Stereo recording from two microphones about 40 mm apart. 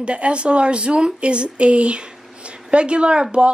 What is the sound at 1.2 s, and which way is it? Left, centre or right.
A woman's voice, right.